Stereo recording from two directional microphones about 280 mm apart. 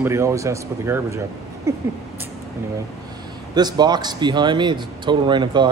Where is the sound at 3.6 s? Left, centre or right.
Centre.